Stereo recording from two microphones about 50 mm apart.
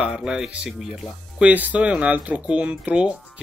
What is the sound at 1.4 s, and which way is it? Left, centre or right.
Speech, right.